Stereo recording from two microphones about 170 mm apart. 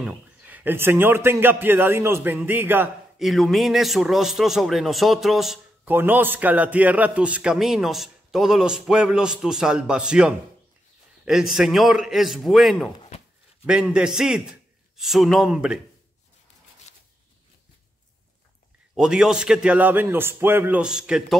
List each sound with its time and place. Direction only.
0.0 s a man's voice: 10° right (ahead or behind)
3.2 s a man's voice: centre (ahead or behind)
16.9 s zipper: 40° left (ahead or behind)
18.9 s a man's voice: 5° right (ahead or behind)